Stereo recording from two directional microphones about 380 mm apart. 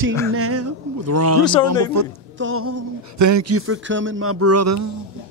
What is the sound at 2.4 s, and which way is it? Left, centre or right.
A man's voice, right.